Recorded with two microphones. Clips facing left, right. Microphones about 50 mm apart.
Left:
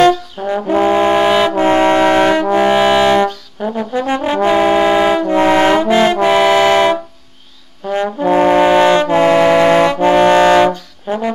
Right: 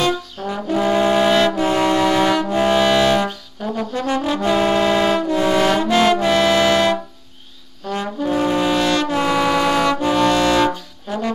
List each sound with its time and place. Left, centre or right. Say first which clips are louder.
0.4 s brass instrument: left 7 dB; centre
0.7 s brass instrument: left 4 dB; left
2.7 s brass instrument: left 3 dB; left
4.2 s brass instrument: left 6 dB; left
5.2 s brass instrument: left 5 dB; left
6.2 s music: left 5 dB; left
7.8 s brass instrument: left 6 dB; centre
8.3 s brass instrument: left 8 dB; left
9.1 s music: left 8 dB; left
10.0 s brass instrument: left 9 dB; left
11.1 s music: left 5 dB; left